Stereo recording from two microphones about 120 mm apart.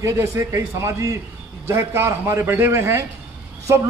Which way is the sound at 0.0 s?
25° right (ahead or behind).